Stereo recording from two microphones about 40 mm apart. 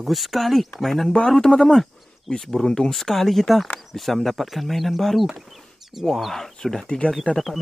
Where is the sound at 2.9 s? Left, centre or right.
Centre.